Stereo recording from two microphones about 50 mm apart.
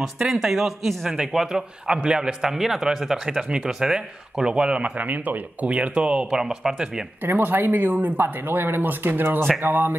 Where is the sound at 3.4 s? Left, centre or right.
Centre.